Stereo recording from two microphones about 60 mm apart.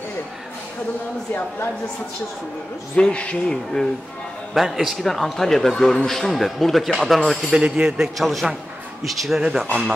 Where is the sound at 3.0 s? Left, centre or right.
Centre.